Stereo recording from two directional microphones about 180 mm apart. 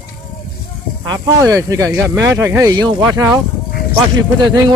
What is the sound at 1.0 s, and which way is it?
Speech, 20° right (ahead or behind).